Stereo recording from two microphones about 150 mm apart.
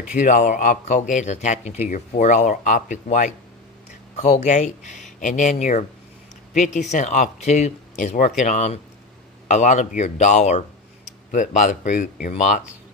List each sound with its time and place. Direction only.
0.1 s speech: 55° left (ahead or behind)